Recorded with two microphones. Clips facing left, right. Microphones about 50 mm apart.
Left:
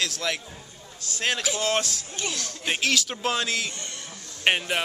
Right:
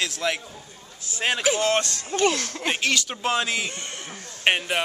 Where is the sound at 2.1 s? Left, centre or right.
Right.